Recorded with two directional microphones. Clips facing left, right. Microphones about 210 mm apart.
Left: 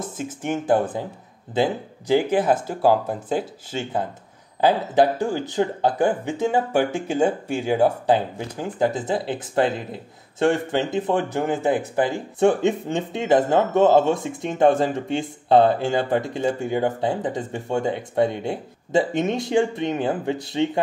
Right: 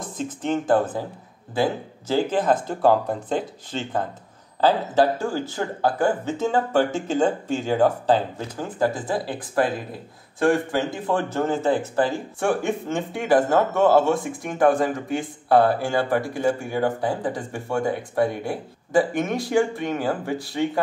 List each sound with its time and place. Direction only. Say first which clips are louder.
0.2 s speech: right 3 dB; 10° left (ahead or behind)